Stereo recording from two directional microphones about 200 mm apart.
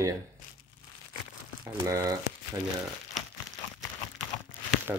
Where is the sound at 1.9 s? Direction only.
15° right (ahead or behind).